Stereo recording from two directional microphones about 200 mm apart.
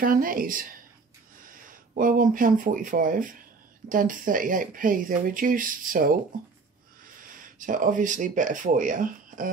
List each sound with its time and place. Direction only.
0.0 s speech: 45° right (ahead or behind)
7.5 s speech: 40° right (ahead or behind)